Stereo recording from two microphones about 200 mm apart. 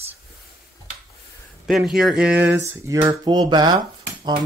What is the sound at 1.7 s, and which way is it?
Speech, centre (ahead or behind).